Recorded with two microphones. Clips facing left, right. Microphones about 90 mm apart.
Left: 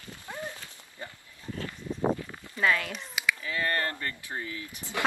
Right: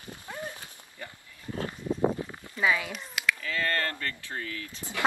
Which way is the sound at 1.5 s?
35° right (ahead or behind).